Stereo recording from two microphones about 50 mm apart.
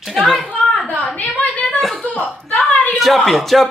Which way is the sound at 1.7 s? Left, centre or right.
Centre.